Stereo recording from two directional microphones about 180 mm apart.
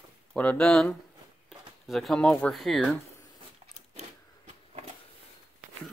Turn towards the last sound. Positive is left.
turn(degrees=-35)  # may be behind; listen again after turning